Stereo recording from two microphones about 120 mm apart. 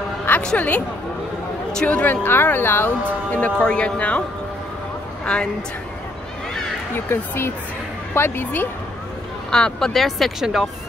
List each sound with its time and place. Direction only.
0.3 s speech: 10° left (ahead or behind)
5.2 s a woman's voice: 10° left (ahead or behind)
7.1 s speech: 20° left (ahead or behind)
9.5 s speech: 5° left (ahead or behind)